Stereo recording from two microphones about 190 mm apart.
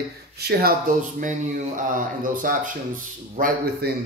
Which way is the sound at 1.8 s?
45° right (ahead or behind).